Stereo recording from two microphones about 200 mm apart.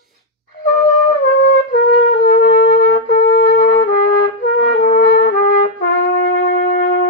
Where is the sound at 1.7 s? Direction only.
45° left (ahead or behind).